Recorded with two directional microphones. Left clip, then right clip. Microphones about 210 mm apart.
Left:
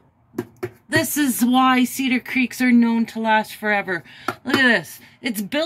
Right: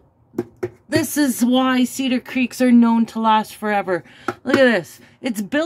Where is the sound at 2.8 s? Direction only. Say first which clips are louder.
Right 3 dB; 15° right (ahead or behind).